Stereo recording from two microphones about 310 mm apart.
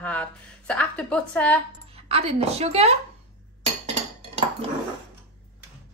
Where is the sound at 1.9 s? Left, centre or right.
Centre.